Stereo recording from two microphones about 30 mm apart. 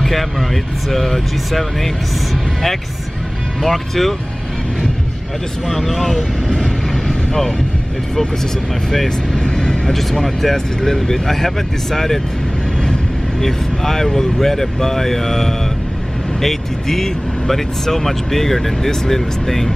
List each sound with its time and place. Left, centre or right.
0.0 s speech: centre
3.6 s speech: centre
5.7 s speech: centre
6.5 s train: left
8.9 s speech: centre
9.4 s speech: left
9.9 s speech: centre
13.4 s speech: centre